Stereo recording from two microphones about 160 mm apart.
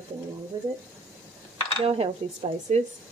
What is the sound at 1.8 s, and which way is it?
Speech, 35° right (ahead or behind).